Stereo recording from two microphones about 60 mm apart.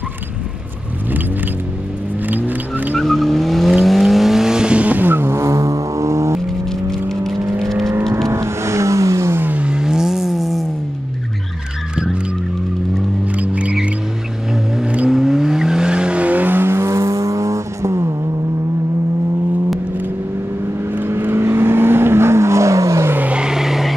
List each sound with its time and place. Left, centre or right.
2.2 s car: right
3.0 s vehicle: centre; by 6.4 s right
6.9 s vehicle: centre
8.3 s vehicle: right
9.3 s vehicle: right
9.6 s vehicle: centre
13.4 s music: right
15.0 s vehicle: centre; by 18.1 s right
20.9 s vehicle: right
23.2 s vehicle: centre